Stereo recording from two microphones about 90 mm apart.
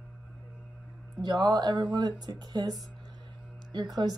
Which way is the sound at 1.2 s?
50° right (ahead or behind).